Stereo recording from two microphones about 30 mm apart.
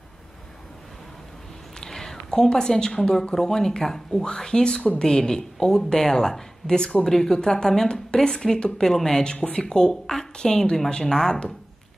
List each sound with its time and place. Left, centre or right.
1.8 s a sound: centre
3.0 s speech: centre
9.2 s speech: left